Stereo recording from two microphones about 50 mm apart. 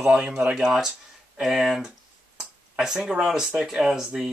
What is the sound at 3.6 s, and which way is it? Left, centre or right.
Speech, centre.